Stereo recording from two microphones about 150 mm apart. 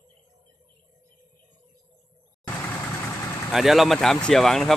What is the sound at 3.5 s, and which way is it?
Speech, centre (ahead or behind).